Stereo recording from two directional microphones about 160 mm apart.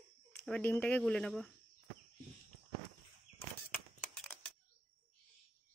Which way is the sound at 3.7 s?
5° left (ahead or behind).